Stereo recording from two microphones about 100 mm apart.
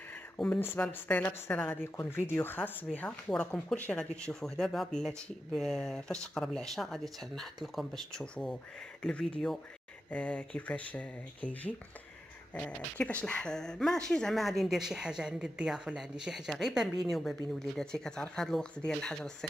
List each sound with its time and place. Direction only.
0.6 s speech: 20° left (ahead or behind)